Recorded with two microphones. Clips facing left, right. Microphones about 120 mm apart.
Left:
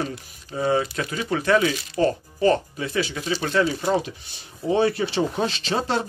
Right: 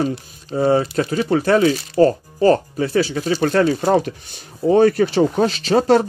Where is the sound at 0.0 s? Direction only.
30° right (ahead or behind).